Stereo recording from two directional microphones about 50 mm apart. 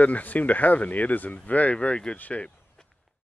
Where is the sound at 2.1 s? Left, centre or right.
Left.